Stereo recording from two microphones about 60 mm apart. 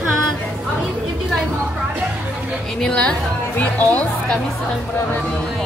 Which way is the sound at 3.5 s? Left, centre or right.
Left.